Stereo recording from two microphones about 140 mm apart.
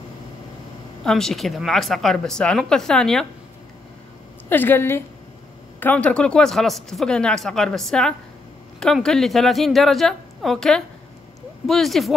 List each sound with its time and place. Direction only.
1.0 s speech: 5° left (ahead or behind)
4.5 s a woman's voice: 15° left (ahead or behind)